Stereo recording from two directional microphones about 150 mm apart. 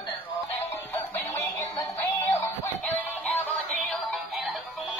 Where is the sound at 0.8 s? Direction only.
15° left (ahead or behind).